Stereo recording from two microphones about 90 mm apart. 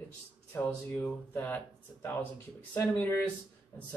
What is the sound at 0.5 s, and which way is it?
Speech, 25° left (ahead or behind).